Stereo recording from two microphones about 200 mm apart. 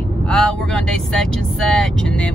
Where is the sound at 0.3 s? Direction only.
5° left (ahead or behind).